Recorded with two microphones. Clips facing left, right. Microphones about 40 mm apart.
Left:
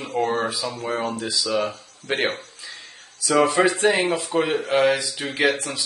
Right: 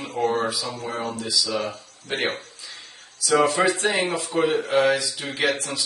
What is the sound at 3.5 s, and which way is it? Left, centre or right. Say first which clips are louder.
Speech: left 2 dB; left.